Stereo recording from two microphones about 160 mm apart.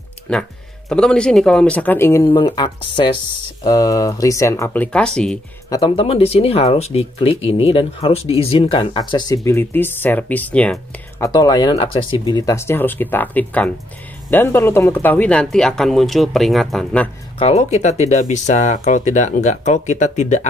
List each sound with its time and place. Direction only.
0.3 s speech: 5° left (ahead or behind)
2.2 s speech: 30° left (ahead or behind)
4.9 s speech: 5° left (ahead or behind)
5.7 s speech: 30° left (ahead or behind)
9.1 s speech: 25° left (ahead or behind)
11.2 s speech: 25° left (ahead or behind); by 17.1 s 5° left (ahead or behind)
17.4 s speech: 45° left (ahead or behind)